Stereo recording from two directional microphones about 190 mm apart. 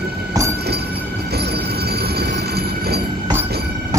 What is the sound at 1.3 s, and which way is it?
Train, 60° right (ahead or behind).